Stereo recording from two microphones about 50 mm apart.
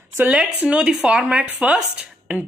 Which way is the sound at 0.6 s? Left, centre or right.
Right.